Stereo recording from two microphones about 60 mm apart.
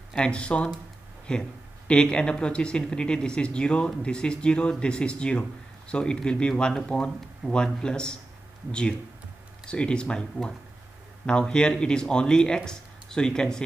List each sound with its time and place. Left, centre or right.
0.1 s speech: centre
9.7 s speech: centre